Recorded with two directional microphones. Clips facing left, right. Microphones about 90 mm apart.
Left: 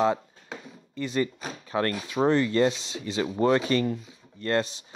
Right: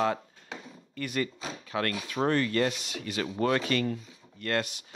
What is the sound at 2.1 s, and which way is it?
Speech, 20° left (ahead or behind).